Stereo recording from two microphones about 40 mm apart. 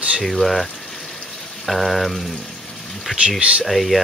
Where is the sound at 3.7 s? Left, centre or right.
Centre.